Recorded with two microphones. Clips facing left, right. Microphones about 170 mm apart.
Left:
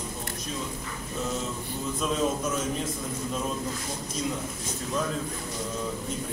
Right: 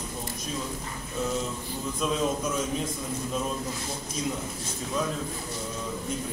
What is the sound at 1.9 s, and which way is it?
Speech, centre (ahead or behind).